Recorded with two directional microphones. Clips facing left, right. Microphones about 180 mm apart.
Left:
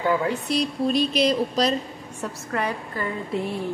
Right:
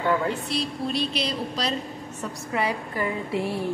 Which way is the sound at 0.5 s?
45° left (ahead or behind).